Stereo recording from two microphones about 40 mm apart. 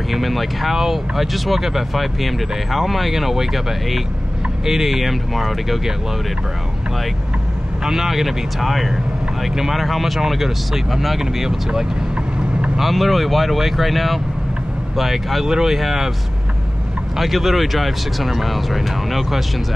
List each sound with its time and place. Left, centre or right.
0.1 s speech: centre
7.8 s speech: centre
17.2 s speech: centre